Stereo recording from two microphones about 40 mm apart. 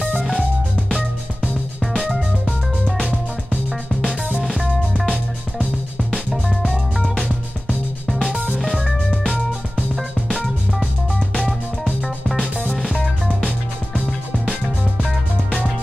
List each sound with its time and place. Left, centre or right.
2.0 s music: centre
8.2 s music: right
9.1 s music: left
11.1 s music: centre